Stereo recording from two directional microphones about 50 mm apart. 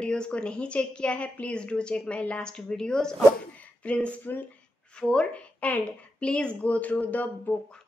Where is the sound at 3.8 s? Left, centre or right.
Left.